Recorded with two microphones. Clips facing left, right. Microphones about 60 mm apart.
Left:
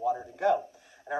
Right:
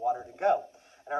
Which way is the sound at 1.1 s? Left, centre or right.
Left.